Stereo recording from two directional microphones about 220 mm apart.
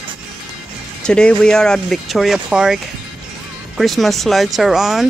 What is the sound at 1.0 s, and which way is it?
Speech, 5° left (ahead or behind).